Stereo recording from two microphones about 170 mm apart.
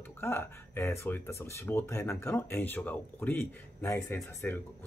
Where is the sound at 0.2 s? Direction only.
15° left (ahead or behind).